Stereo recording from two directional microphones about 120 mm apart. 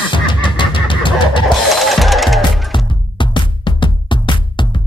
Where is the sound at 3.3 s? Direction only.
40° left (ahead or behind).